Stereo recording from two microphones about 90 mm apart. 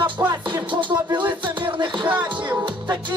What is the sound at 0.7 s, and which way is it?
Music, 65° right (ahead or behind).